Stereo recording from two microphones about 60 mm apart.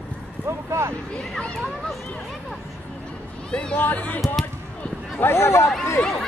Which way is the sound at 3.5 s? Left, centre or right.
Left.